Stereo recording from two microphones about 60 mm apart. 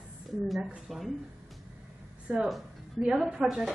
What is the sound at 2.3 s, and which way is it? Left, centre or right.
Speech, centre.